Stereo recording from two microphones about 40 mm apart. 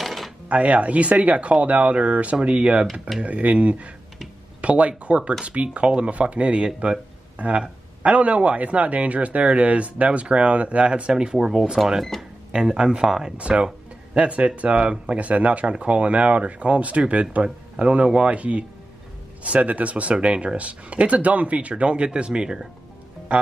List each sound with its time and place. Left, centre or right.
0.0 s a sound: centre
0.5 s speech: right; by 11.8 s centre
12.0 s speech: centre
12.5 s speech: centre
13.4 s speech: right
23.3 s music: right